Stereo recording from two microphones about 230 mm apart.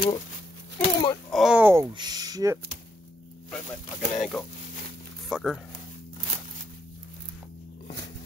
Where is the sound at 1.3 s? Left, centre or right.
Centre.